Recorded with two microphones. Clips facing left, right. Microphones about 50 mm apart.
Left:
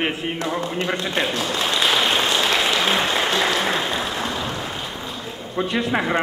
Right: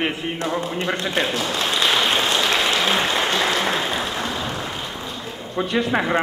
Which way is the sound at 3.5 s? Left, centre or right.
Centre.